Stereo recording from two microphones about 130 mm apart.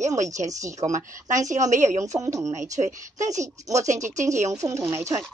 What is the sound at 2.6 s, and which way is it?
Speech, 70° right (ahead or behind).